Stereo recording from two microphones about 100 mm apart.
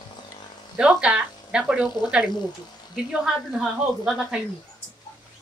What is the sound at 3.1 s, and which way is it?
A woman's voice, 5° right (ahead or behind).